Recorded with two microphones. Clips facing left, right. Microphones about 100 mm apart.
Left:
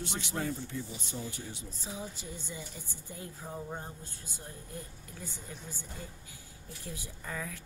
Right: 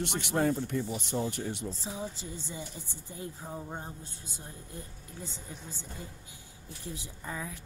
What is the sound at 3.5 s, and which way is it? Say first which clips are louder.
Speech: right 1 dB; 15° right (ahead or behind).